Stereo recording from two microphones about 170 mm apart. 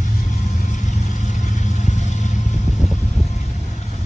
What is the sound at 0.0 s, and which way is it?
Vehicle, 45° left (ahead or behind).